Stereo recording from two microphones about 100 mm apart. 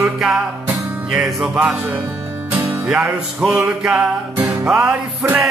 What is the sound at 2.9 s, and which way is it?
Music, 5° right (ahead or behind).